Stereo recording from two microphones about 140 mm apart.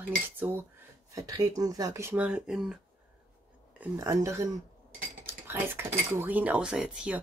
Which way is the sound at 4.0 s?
20° right (ahead or behind).